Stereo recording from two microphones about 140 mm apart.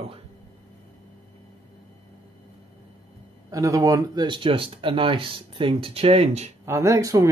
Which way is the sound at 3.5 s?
25° right (ahead or behind).